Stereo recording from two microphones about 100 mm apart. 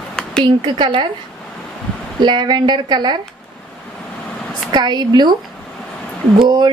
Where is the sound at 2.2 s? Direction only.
45° right (ahead or behind).